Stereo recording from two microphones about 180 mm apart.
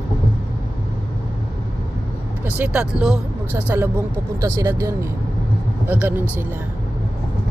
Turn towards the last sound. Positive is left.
turn(degrees=-10)  # may be behind; listen again after turning